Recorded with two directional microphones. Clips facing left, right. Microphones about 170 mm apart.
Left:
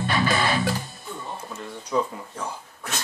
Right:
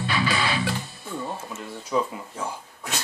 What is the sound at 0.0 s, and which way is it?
Music, 45° left (ahead or behind).